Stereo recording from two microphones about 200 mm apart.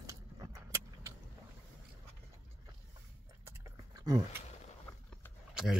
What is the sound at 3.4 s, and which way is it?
Chewing, 15° right (ahead or behind).